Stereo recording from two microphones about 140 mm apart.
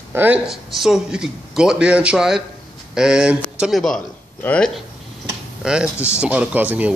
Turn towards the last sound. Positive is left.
turn(degrees=-10)  # may be behind; listen again after turning